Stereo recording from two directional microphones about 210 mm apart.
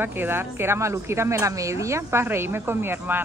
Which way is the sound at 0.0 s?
10° right (ahead or behind).